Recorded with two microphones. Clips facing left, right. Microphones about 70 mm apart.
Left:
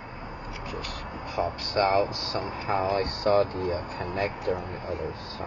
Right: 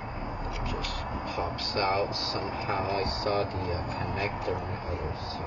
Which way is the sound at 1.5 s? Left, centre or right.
Left.